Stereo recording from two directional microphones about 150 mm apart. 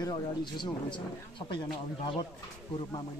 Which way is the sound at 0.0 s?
30° left (ahead or behind).